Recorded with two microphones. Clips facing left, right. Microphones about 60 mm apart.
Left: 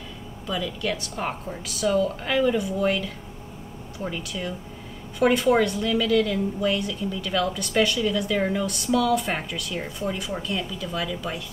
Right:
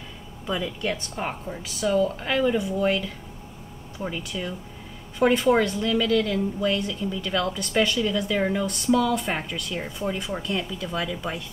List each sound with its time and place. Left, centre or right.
0.5 s speech: right
1.1 s speech: centre
4.3 s a woman's voice: centre